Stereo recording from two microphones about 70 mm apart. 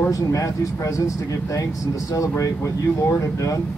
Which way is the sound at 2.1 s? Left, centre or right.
Left.